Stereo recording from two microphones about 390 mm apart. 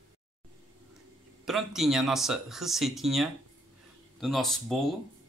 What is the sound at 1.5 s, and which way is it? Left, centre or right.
Speech, centre.